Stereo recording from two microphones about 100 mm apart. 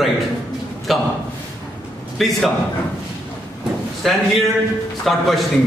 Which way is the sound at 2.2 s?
Centre (ahead or behind).